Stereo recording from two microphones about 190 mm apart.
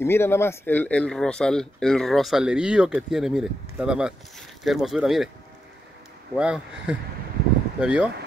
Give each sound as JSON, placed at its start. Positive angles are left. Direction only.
{"t": 0.0, "sound": "speech", "side_deg": 15}
{"t": 6.3, "sound": "speech", "side_deg": -5}